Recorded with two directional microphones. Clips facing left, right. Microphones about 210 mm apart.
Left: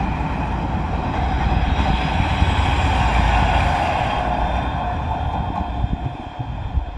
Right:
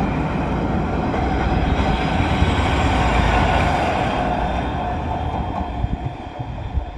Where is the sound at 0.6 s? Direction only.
55° right (ahead or behind).